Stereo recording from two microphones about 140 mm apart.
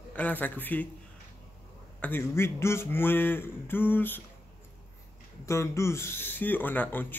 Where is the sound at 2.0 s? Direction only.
15° left (ahead or behind).